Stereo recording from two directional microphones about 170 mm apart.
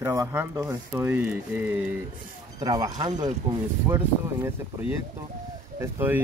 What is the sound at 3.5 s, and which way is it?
Speech, 35° right (ahead or behind).